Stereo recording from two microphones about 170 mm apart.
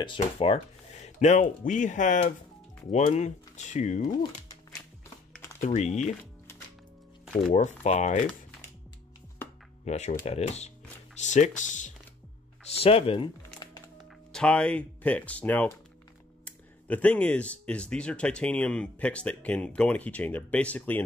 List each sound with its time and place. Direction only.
0.0 s speech: 30° left (ahead or behind)
5.6 s speech: 40° left (ahead or behind)
7.5 s speech: 40° left (ahead or behind)
9.8 s speech: 40° left (ahead or behind)
12.7 s speech: 35° left (ahead or behind)
14.3 s speech: 5° left (ahead or behind)